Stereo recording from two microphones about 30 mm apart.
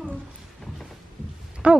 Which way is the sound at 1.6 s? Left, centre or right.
Right.